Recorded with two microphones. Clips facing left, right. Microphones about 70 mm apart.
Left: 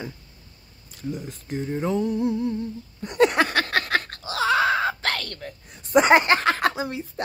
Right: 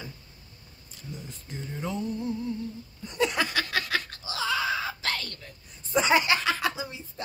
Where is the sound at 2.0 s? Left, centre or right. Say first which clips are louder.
Left 8 dB; left.